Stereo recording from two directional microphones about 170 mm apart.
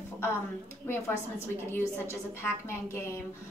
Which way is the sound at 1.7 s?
15° left (ahead or behind).